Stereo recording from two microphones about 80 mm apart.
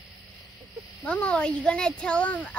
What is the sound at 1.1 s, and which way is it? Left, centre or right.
Speech, centre.